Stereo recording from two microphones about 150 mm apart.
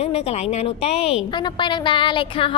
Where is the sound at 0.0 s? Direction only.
45° left (ahead or behind).